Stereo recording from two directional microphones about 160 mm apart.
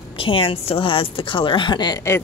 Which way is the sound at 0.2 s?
35° left (ahead or behind).